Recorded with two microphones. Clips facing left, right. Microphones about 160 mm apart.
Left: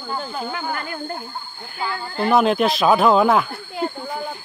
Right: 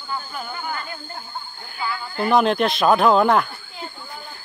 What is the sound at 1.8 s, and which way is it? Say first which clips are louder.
Speech: left 1 dB; 30° left (ahead or behind).